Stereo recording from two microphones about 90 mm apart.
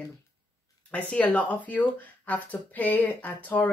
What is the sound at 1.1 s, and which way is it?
A woman's voice, 15° left (ahead or behind).